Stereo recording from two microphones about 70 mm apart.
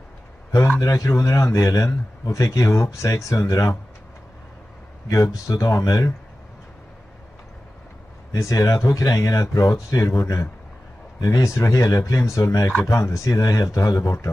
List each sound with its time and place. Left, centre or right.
0.7 s speech: left
5.1 s speech: left
8.3 s speech: left